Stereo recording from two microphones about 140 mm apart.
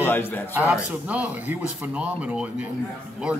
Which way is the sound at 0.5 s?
10° right (ahead or behind).